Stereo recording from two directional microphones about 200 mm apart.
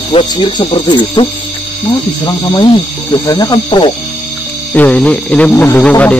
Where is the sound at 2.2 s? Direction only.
20° left (ahead or behind).